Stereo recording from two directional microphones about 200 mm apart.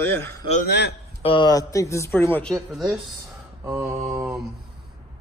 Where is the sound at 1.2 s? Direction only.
25° left (ahead or behind); by 2.9 s centre (ahead or behind).